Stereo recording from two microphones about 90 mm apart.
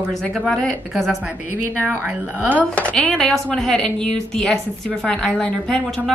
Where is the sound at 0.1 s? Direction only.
Centre (ahead or behind).